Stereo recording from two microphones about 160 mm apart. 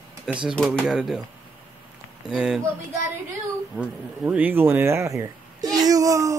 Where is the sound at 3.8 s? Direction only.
10° right (ahead or behind).